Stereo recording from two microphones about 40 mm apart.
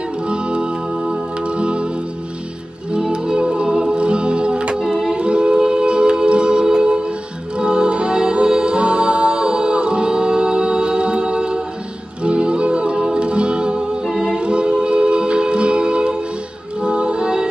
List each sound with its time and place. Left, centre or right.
0.3 s music: right
2.9 s music: right
4.8 s music: centre
5.1 s music: right
14.0 s a capella: centre
14.4 s music: right